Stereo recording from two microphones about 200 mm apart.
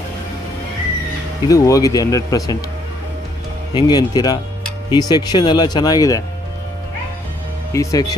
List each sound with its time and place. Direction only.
1.5 s speech: 15° left (ahead or behind)
3.7 s speech: 20° left (ahead or behind)
7.7 s speech: 15° left (ahead or behind)